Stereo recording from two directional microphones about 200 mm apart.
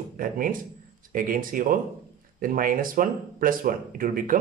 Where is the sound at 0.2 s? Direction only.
45° right (ahead or behind).